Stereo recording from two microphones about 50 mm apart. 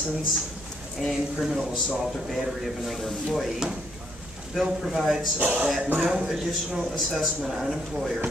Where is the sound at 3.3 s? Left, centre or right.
Centre.